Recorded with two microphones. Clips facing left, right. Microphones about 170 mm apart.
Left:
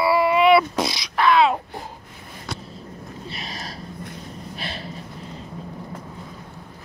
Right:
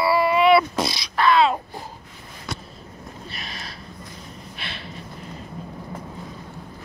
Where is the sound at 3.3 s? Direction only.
35° left (ahead or behind).